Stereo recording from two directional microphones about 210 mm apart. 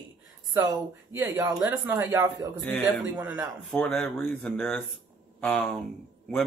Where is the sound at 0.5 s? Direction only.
15° right (ahead or behind).